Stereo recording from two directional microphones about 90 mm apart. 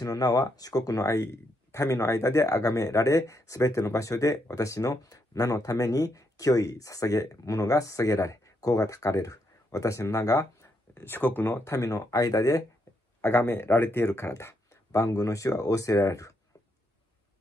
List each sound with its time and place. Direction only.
0.0 s speech: 45° left (ahead or behind)
11.0 s speech: 25° left (ahead or behind); by 12.6 s 40° left (ahead or behind)
13.2 s speech: 25° left (ahead or behind)